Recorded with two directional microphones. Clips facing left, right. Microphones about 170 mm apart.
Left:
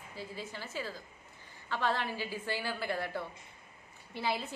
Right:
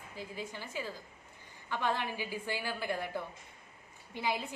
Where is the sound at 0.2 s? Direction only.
15° right (ahead or behind).